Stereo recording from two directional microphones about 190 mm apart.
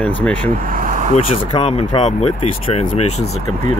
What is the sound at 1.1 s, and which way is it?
Speech, 30° left (ahead or behind).